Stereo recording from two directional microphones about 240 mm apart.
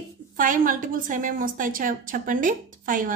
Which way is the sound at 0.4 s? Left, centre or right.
Right.